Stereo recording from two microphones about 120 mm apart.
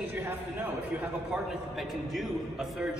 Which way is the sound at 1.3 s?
Centre (ahead or behind).